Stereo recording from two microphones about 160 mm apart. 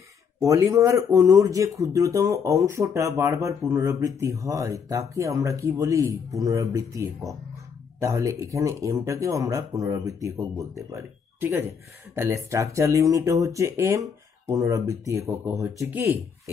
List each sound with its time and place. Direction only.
0.4 s speech: 20° right (ahead or behind)